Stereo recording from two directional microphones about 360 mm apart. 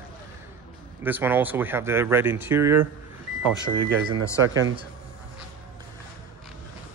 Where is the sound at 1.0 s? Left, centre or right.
Centre.